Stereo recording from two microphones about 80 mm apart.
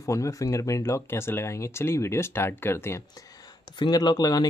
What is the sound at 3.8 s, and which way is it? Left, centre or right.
Speech, left.